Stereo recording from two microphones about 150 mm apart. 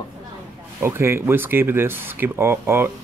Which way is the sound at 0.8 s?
15° right (ahead or behind).